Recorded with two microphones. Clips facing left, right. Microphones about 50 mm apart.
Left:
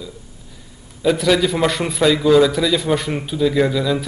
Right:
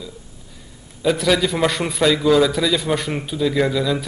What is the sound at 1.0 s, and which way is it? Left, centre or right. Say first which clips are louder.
A man's voice: left 2 dB; centre.